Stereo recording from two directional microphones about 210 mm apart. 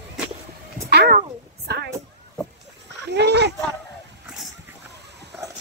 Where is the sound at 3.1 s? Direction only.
55° right (ahead or behind).